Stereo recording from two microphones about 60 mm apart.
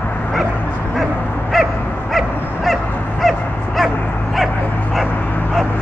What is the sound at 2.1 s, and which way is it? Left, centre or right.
Dog, centre.